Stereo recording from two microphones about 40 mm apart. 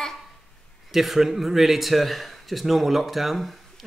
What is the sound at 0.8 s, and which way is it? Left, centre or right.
Speech, centre.